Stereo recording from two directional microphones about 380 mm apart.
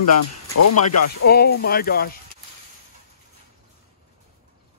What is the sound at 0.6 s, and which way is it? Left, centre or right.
Speech, left.